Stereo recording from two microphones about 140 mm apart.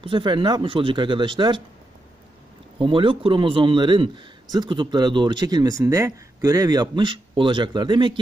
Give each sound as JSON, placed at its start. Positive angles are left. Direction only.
{"t": 0.0, "sound": "a man's voice", "side_deg": -35}
{"t": 2.8, "sound": "a man's voice", "side_deg": -35}